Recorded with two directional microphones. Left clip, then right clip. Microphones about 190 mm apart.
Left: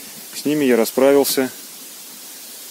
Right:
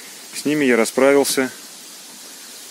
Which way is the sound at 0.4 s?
10° left (ahead or behind).